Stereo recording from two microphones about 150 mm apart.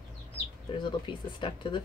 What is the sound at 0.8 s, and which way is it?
Speech, 30° left (ahead or behind).